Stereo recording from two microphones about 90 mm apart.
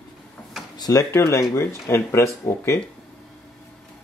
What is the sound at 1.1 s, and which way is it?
Speech, 30° left (ahead or behind).